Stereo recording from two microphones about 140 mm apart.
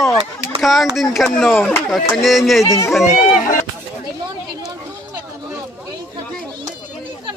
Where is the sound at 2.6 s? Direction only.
25° left (ahead or behind).